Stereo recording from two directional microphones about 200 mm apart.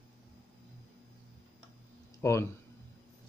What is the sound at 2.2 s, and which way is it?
Speech, 15° left (ahead or behind).